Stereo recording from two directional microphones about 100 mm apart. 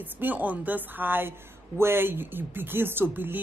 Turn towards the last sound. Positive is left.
turn(degrees=-20)  # may be behind; listen again after turning